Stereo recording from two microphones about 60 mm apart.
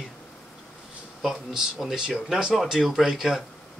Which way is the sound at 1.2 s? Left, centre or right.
Centre.